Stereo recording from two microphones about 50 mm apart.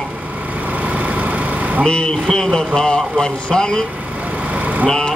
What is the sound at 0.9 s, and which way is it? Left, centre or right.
Vehicle, right.